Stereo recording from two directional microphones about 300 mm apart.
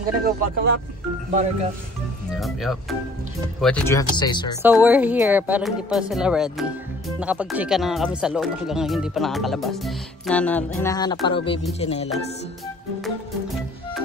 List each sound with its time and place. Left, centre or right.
0.0 s speech: right
2.3 s speech: centre
4.8 s speech: centre
11.8 s music: left